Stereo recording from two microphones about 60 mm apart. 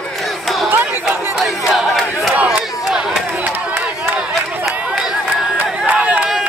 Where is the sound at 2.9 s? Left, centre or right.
Centre.